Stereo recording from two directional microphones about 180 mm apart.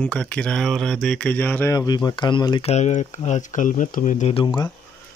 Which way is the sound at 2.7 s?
40° left (ahead or behind).